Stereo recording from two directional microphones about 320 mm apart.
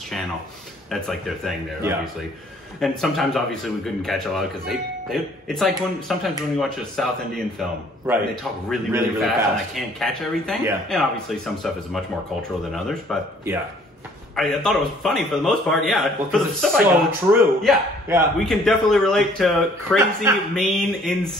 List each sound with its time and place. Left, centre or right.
0.9 s a man's voice: centre
8.6 s a man's voice: centre